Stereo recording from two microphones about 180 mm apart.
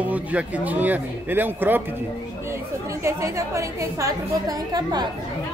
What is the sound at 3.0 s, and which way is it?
Speech, 15° right (ahead or behind).